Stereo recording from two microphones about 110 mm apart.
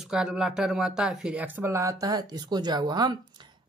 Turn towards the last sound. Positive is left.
turn(degrees=-40)  # may be behind; listen again after turning